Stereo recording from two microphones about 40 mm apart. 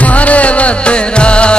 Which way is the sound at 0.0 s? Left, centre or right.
Left.